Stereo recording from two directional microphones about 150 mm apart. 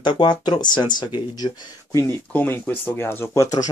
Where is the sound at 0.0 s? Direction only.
30° left (ahead or behind).